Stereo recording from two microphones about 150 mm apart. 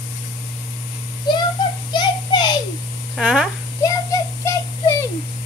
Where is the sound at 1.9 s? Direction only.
30° left (ahead or behind).